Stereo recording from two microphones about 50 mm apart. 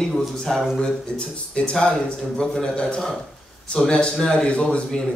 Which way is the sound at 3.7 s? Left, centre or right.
Left.